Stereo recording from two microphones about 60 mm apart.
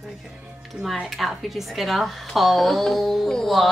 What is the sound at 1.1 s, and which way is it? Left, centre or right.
A woman's voice, centre.